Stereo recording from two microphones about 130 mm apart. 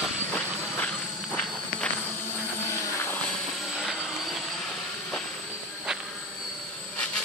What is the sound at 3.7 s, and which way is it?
Vehicle, centre (ahead or behind).